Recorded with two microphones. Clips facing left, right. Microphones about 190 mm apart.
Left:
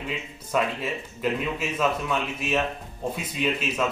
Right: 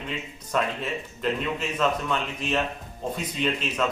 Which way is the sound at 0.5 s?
5° left (ahead or behind).